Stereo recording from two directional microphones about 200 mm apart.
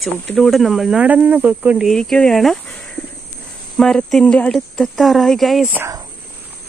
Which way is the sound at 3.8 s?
5° left (ahead or behind).